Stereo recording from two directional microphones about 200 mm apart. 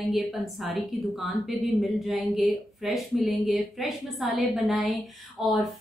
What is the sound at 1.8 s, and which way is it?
Speech, centre (ahead or behind).